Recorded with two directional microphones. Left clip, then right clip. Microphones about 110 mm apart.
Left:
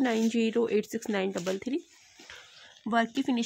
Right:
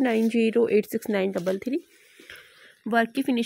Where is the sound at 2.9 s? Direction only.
20° right (ahead or behind).